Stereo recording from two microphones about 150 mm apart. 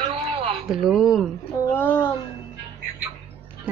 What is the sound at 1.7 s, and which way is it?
Speech, 15° left (ahead or behind).